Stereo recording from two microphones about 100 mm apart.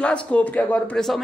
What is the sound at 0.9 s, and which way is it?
Speech, 5° left (ahead or behind).